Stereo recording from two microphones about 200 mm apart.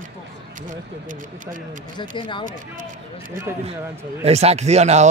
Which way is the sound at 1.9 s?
25° left (ahead or behind).